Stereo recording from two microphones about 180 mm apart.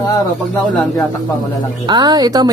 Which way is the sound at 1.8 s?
25° right (ahead or behind).